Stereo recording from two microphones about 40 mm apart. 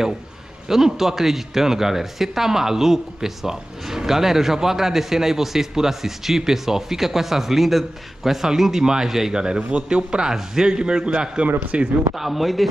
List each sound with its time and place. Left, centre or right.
0.7 s a man's voice: centre; by 11.9 s right
12.2 s a man's voice: centre